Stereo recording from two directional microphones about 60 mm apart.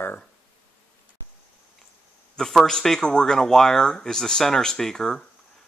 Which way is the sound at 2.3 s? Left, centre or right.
Centre.